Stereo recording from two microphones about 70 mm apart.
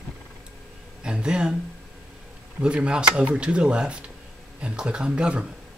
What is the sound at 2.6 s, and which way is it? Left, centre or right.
Speech, centre.